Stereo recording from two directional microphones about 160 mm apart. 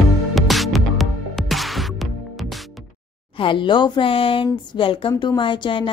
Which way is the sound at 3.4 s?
30° left (ahead or behind).